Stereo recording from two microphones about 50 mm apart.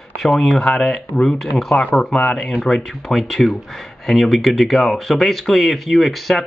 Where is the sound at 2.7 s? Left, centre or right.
Centre.